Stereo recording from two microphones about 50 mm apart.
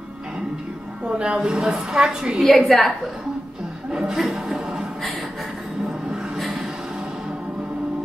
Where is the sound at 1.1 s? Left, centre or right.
Centre.